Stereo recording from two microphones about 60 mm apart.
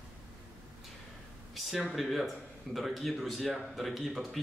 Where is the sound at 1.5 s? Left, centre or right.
Centre.